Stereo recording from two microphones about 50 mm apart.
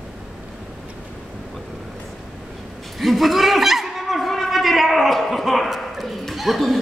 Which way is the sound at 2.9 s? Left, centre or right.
Centre.